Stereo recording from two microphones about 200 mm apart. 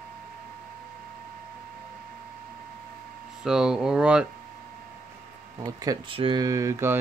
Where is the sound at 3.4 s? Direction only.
5° right (ahead or behind).